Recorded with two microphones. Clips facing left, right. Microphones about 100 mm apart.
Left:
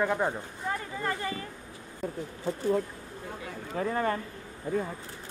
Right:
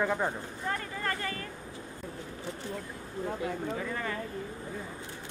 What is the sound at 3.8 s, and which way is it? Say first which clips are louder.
Speech: left 6 dB; 40° left (ahead or behind).